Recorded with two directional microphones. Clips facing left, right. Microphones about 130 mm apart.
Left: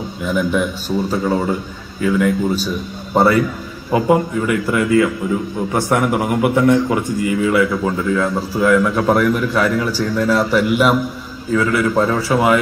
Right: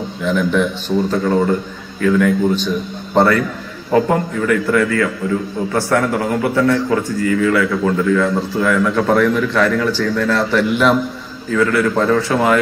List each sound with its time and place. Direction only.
0.2 s a man's voice: 5° left (ahead or behind)